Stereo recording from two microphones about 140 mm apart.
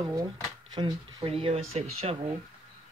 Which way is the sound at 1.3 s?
45° right (ahead or behind).